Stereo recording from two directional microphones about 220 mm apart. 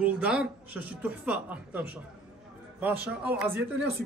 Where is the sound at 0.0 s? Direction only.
5° right (ahead or behind).